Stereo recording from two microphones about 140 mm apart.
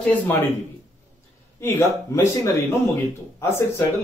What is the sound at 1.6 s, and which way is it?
Speech, 20° left (ahead or behind).